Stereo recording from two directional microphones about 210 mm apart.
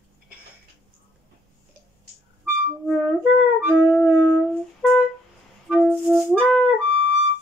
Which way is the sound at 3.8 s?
Centre (ahead or behind).